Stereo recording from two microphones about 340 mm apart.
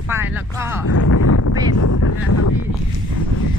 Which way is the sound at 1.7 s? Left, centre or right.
Left.